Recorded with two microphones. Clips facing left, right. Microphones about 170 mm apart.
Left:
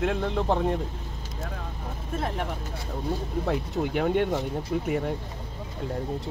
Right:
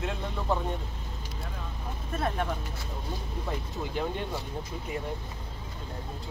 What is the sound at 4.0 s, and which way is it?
Speech, 65° left (ahead or behind).